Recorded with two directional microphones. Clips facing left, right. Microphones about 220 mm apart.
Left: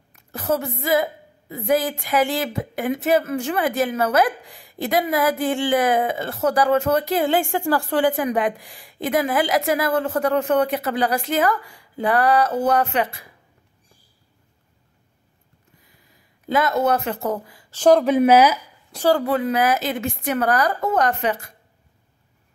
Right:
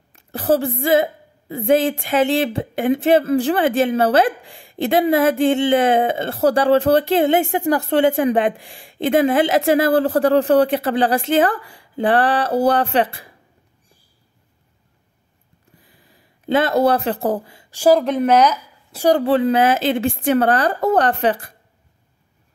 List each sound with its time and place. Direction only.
0.1 s a woman's voice: 30° right (ahead or behind)
15.8 s a sound: 30° right (ahead or behind)
17.6 s speech: 10° right (ahead or behind)
18.0 s speech: 5° left (ahead or behind)
19.2 s a woman's voice: 30° right (ahead or behind)